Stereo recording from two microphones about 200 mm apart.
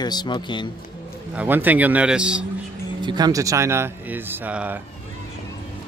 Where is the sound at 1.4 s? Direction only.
10° right (ahead or behind).